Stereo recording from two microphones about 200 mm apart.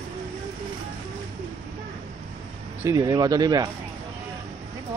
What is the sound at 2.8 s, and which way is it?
Speech, 20° right (ahead or behind).